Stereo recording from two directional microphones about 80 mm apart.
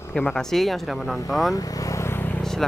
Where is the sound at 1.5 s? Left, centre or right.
Left.